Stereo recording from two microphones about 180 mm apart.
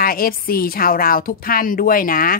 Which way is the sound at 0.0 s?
55° left (ahead or behind).